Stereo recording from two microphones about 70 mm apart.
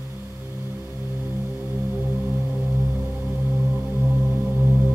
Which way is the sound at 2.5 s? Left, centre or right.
Centre.